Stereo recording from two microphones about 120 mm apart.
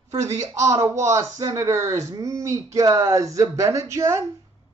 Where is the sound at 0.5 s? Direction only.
25° right (ahead or behind).